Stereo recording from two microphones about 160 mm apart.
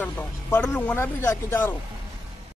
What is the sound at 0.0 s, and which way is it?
Speech, 10° left (ahead or behind).